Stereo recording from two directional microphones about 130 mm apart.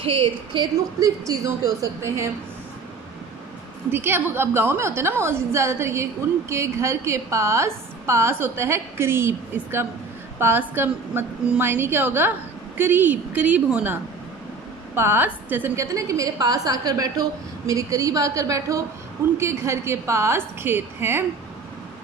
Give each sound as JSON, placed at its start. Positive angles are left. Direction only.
{"t": 0.0, "sound": "a woman's voice", "side_deg": -45}
{"t": 1.0, "sound": "a woman's voice", "side_deg": -25}
{"t": 3.9, "sound": "a woman's voice", "side_deg": -15}
{"t": 15.0, "sound": "a woman's voice", "side_deg": -15}